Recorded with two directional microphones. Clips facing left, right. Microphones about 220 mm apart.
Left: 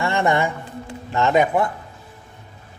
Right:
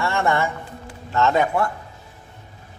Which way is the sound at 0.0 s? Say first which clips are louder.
Left 2 dB; 15° left (ahead or behind).